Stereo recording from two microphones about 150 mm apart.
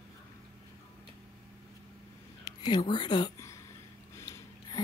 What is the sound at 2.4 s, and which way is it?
Speech, 30° left (ahead or behind).